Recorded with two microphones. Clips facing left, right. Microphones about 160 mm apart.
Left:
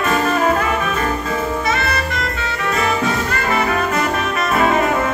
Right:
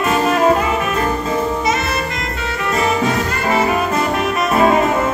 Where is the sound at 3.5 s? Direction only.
20° right (ahead or behind).